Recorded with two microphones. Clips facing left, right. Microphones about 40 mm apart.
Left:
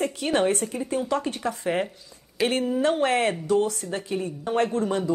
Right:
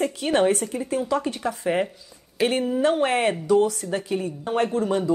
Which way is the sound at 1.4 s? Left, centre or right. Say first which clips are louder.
Right 2 dB; centre.